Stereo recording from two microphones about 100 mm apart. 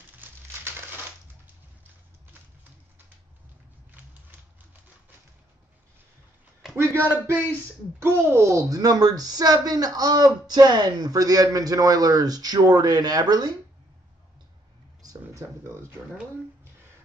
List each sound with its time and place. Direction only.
0.2 s crumpling: 25° right (ahead or behind)
6.7 s a man's voice: 25° right (ahead or behind)
8.0 s a woman's voice: 25° right (ahead or behind); by 13.5 s 40° right (ahead or behind)
15.0 s a sound: 35° right (ahead or behind)